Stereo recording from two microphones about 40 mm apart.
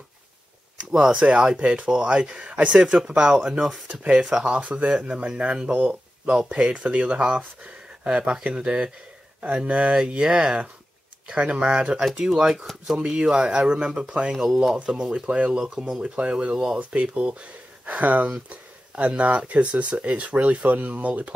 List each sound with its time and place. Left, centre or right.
0.9 s speech: centre
3.5 s speech: centre
3.8 s speech: right
4.9 s speech: centre
14.3 s speech: centre
14.8 s speech: centre
15.6 s speech: centre
16.0 s speech: right
16.5 s speech: centre
16.9 s speech: right